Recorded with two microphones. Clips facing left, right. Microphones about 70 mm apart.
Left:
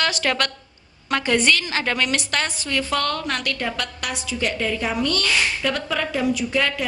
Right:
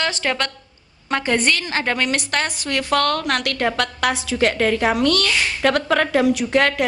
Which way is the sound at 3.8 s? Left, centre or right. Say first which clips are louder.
Right 8 dB; right.